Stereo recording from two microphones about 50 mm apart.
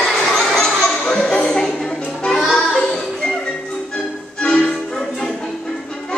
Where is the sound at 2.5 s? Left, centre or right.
Centre.